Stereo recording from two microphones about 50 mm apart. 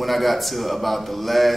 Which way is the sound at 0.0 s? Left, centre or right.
Centre.